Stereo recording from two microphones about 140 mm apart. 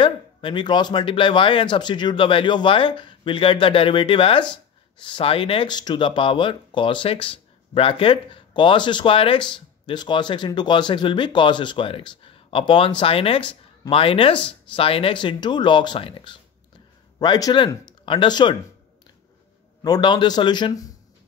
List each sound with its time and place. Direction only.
0.0 s speech: 35° left (ahead or behind)
17.2 s speech: 30° left (ahead or behind)
19.8 s speech: 30° left (ahead or behind)